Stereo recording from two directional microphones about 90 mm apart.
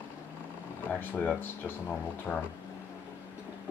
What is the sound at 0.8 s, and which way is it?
Speech, 20° left (ahead or behind).